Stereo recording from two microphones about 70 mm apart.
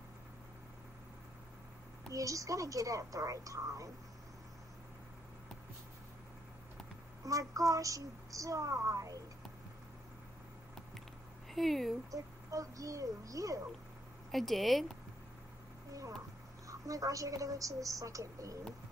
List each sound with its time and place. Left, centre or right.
2.0 s a woman's voice: right
7.2 s a woman's voice: right
11.5 s speech: centre
12.1 s a woman's voice: right
14.3 s speech: centre
15.9 s a sound: right
16.6 s a woman's voice: right